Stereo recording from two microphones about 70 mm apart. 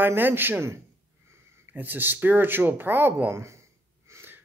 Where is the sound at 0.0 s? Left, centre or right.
Right.